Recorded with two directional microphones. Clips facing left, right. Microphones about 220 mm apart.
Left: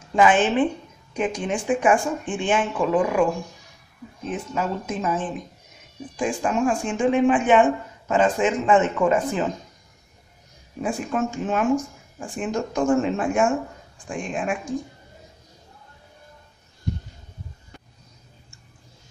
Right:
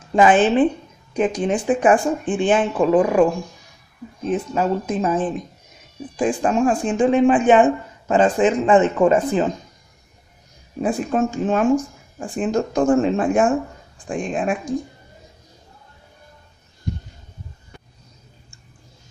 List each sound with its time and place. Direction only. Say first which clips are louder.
0.1 s speech: right 4 dB; 35° right (ahead or behind)
4.3 s speech: right 6 dB; 35° right (ahead or behind)
10.8 s speech: right 5 dB; 35° right (ahead or behind)